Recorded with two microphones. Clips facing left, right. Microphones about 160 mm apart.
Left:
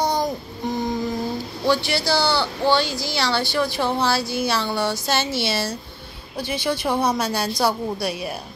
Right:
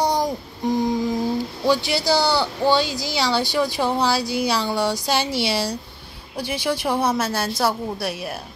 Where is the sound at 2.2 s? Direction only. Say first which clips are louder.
Right 1 dB; 45° right (ahead or behind).